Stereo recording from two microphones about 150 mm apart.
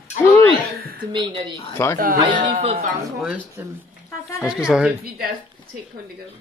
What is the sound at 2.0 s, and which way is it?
Speech, 65° right (ahead or behind).